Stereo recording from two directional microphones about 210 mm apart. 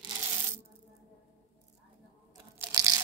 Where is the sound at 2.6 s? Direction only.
15° right (ahead or behind).